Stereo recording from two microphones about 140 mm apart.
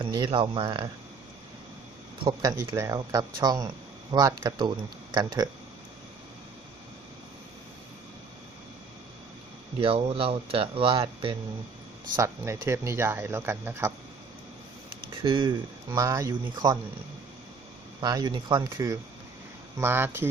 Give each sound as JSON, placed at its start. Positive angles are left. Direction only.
{"t": 0.0, "sound": "speech", "side_deg": -35}
{"t": 2.4, "sound": "speech", "side_deg": -20}
{"t": 9.8, "sound": "speech", "side_deg": -40}
{"t": 12.2, "sound": "speech", "side_deg": -20}
{"t": 15.2, "sound": "speech", "side_deg": -35}
{"t": 15.9, "sound": "speech", "side_deg": -25}
{"t": 18.0, "sound": "speech", "side_deg": -30}
{"t": 19.8, "sound": "speech", "side_deg": -15}